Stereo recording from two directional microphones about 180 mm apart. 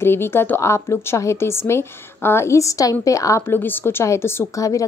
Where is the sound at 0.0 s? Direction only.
15° left (ahead or behind).